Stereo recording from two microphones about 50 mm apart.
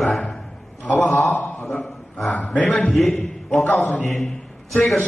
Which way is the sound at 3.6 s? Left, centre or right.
Left.